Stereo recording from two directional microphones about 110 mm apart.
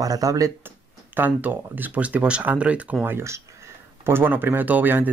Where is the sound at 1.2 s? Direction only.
15° right (ahead or behind).